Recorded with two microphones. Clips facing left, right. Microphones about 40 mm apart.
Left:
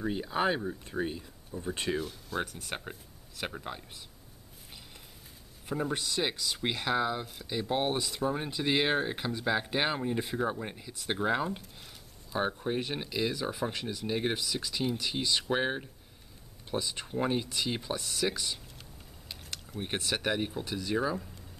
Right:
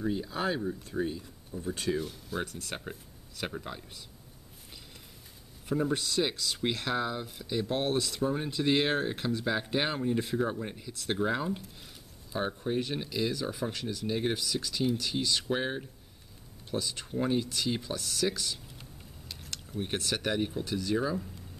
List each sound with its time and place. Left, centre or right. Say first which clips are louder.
0.0 s speech: left 2 dB; left
2.0 s speech: even; centre
5.7 s speech: right 3 dB; centre